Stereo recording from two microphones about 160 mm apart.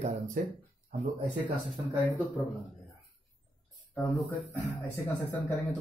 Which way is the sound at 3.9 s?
10° left (ahead or behind).